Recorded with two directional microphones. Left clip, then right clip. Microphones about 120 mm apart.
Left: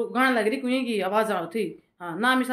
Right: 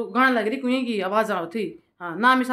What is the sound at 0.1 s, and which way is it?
Speech, 25° right (ahead or behind).